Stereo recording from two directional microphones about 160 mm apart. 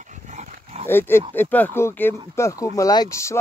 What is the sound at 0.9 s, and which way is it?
Speech, 15° left (ahead or behind).